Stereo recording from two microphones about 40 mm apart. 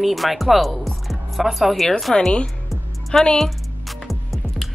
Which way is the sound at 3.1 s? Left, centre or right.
Left.